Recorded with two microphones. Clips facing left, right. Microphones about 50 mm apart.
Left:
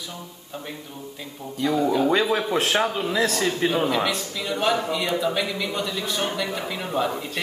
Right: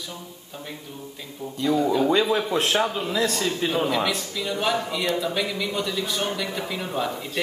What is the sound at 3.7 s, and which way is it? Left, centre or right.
Speech, centre.